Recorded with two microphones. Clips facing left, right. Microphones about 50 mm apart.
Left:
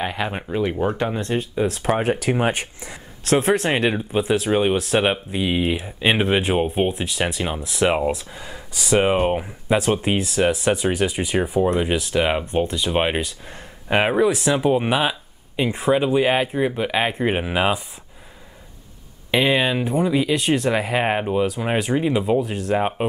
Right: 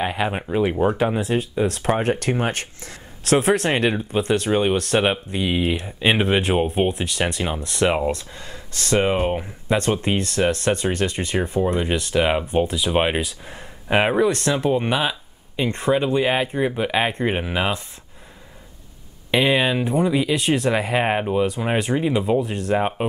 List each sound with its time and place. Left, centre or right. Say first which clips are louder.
0.0 s speech: right 2 dB; centre
3.3 s speech: even; centre
19.3 s speech: even; centre